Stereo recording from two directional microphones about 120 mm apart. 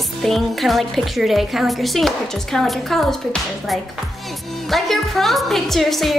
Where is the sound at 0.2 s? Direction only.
Centre (ahead or behind).